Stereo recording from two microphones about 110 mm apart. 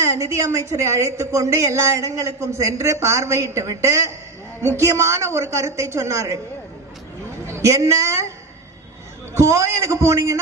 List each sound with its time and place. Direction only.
0.0 s a woman's voice: 25° right (ahead or behind)
7.4 s a sound: 25° right (ahead or behind)
9.3 s a woman's voice: 25° right (ahead or behind)